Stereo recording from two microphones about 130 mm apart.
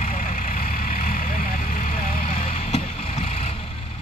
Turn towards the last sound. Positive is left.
turn(degrees=55)  # may be behind; listen again after turning